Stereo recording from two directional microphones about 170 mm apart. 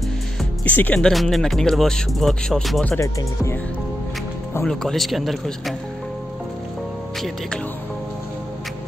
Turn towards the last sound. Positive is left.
turn(degrees=5)  # may be behind; listen again after turning